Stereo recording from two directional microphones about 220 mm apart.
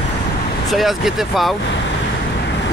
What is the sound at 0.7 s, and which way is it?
Speech, centre (ahead or behind).